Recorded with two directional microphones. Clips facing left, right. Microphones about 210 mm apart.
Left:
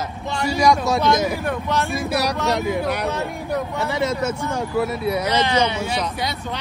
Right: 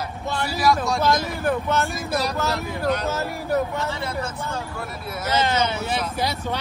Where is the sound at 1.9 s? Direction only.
65° left (ahead or behind).